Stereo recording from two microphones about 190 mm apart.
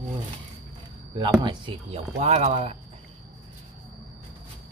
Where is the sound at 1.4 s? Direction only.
25° right (ahead or behind).